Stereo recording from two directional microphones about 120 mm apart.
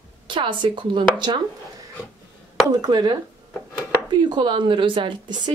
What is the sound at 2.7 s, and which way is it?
Speech, 35° right (ahead or behind).